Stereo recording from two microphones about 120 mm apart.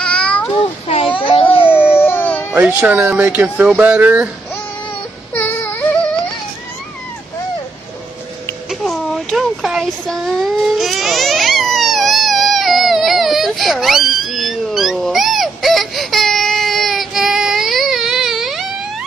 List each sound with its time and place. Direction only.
0.0 s meow: 10° left (ahead or behind)
0.8 s a sound: 50° left (ahead or behind)
1.7 s howl: 15° left (ahead or behind)
2.5 s speech: 10° right (ahead or behind)
5.3 s a sound: 15° left (ahead or behind)
8.6 s child singing: centre (ahead or behind)